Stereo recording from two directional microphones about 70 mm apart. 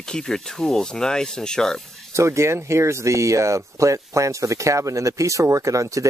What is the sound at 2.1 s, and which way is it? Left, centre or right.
Speech, right.